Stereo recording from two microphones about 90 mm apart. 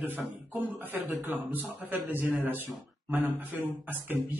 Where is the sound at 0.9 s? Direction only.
20° right (ahead or behind).